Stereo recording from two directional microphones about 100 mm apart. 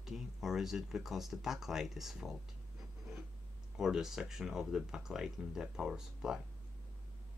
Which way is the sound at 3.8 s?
5° right (ahead or behind).